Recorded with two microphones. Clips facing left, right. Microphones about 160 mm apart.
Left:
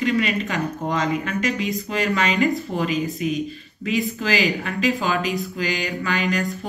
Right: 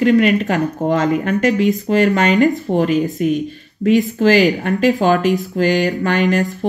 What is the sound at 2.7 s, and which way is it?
Speech, 65° right (ahead or behind).